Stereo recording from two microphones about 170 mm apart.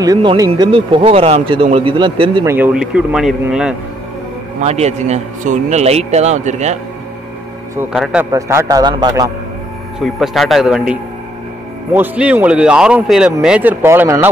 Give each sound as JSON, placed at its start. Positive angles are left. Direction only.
{"t": 0.0, "sound": "speech", "side_deg": -25}
{"t": 2.4, "sound": "speech", "side_deg": -10}
{"t": 4.6, "sound": "speech", "side_deg": -40}
{"t": 7.9, "sound": "speech", "side_deg": -5}
{"t": 8.3, "sound": "a man's voice", "side_deg": -15}
{"t": 9.9, "sound": "speech", "side_deg": 0}